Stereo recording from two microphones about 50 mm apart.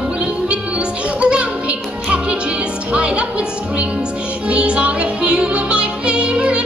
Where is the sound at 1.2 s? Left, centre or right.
Right.